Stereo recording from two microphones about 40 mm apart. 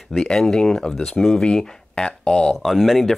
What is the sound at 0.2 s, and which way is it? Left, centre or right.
Speech, centre.